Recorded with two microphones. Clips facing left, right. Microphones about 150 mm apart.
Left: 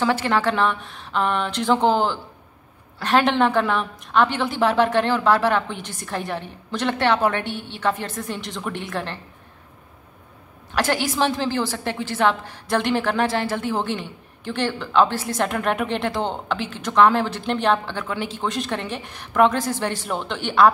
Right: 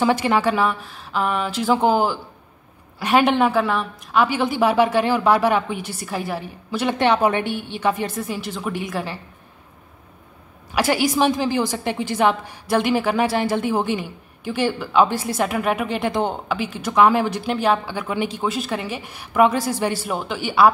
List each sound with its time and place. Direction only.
0.0 s a woman's voice: 15° right (ahead or behind)
10.7 s a woman's voice: 10° right (ahead or behind)